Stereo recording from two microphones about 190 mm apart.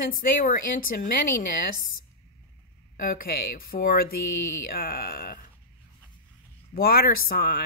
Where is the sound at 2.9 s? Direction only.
50° left (ahead or behind).